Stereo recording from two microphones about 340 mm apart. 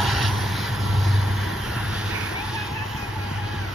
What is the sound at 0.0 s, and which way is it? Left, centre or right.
Vehicle, centre.